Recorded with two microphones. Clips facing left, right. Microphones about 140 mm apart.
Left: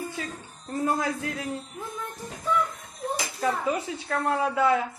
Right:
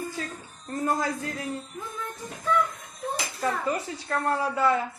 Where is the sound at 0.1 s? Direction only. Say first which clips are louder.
Even; 5° left (ahead or behind).